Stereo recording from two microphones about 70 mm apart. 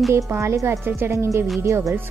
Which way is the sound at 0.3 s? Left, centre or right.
Right.